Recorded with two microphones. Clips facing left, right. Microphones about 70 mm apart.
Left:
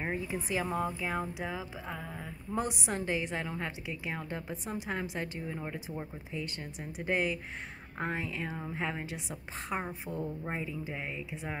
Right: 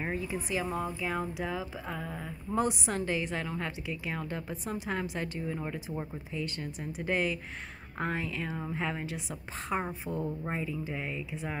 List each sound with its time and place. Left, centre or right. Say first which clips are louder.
0.5 s speech: left 2 dB; left
1.2 s a woman's voice: right 3 dB; centre
9.7 s a woman's voice: right 3 dB; centre
10.1 s speech: right 2 dB; centre
10.5 s a woman's voice: right 2 dB; centre